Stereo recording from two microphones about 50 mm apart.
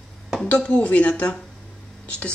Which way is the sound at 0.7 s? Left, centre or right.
Left.